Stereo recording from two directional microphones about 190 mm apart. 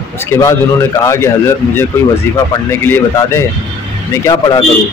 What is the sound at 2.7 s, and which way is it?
Speech, 15° left (ahead or behind).